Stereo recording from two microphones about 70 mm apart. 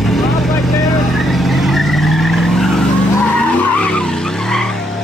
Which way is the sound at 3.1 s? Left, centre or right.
Left.